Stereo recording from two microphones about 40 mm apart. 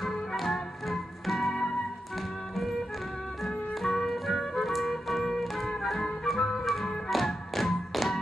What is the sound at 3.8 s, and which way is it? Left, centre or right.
Music, centre.